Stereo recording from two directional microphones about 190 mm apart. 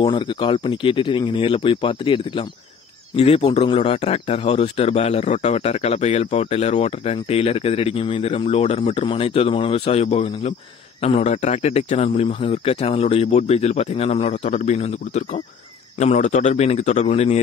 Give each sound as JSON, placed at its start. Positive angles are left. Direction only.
{"t": 0.0, "sound": "a man's voice", "side_deg": 25}